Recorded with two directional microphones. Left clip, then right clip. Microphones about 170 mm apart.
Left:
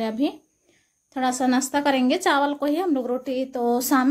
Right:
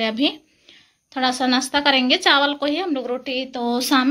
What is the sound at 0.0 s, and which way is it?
A woman's voice, 15° left (ahead or behind).